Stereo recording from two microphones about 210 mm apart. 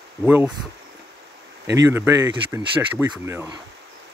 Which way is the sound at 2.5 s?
10° right (ahead or behind).